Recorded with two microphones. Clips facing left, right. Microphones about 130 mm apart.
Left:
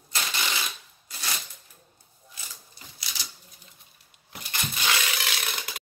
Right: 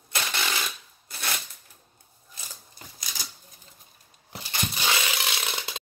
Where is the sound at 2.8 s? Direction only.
45° right (ahead or behind).